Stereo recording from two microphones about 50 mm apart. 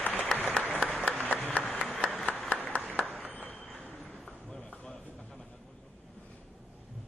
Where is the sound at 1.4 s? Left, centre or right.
Left.